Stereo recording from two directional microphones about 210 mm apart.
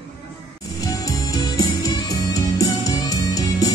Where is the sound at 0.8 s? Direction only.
15° left (ahead or behind).